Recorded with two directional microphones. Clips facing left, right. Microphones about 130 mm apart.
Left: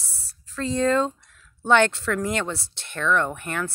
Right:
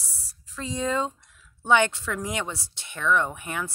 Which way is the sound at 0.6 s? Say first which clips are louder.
Left 6 dB; 10° right (ahead or behind).